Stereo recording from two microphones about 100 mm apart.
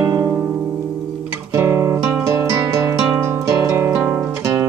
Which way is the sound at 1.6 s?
25° right (ahead or behind).